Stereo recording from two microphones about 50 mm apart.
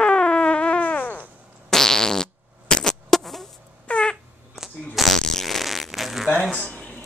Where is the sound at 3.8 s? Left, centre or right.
Centre.